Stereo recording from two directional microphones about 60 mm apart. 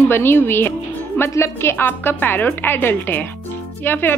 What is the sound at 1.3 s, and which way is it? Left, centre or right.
Speech, left.